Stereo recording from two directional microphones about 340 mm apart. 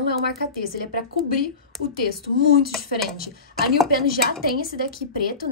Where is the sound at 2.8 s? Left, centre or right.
Left.